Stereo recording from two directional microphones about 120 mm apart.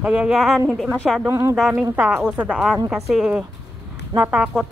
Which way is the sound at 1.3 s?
25° right (ahead or behind).